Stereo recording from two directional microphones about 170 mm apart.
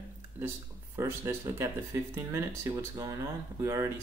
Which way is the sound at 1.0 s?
15° right (ahead or behind).